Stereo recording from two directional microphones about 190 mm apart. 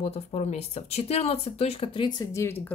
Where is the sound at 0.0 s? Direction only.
35° left (ahead or behind); by 2.5 s 20° left (ahead or behind).